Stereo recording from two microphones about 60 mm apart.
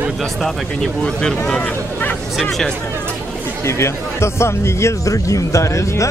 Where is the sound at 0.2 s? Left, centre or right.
Centre.